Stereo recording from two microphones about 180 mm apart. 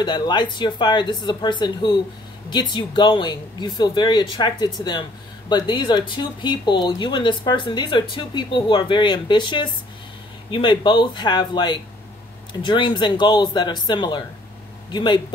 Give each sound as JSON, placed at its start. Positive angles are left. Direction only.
{"t": 0.0, "sound": "speech", "side_deg": 25}